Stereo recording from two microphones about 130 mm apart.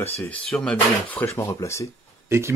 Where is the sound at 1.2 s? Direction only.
20° left (ahead or behind).